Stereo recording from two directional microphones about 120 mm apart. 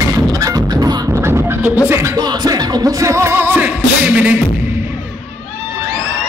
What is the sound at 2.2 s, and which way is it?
Music, 35° right (ahead or behind).